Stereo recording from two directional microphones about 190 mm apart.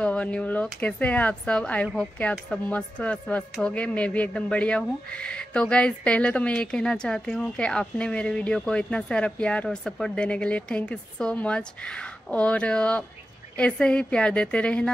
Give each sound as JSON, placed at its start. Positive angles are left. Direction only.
{"t": 0.0, "sound": "speech", "side_deg": 5}